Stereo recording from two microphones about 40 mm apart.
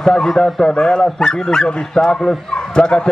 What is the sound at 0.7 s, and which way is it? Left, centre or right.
Speech, left.